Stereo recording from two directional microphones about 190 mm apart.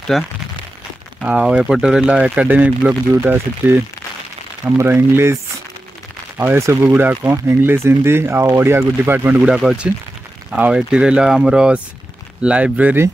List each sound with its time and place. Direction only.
0.1 s speech: centre (ahead or behind)